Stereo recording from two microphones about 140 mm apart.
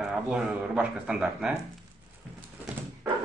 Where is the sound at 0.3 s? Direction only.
5° right (ahead or behind).